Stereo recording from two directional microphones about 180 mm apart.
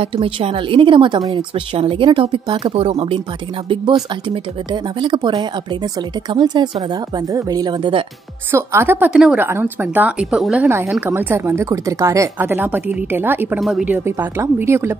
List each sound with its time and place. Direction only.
0.0 s speech: 30° right (ahead or behind)
5.0 s speech: 25° right (ahead or behind)
8.5 s speech: 15° right (ahead or behind)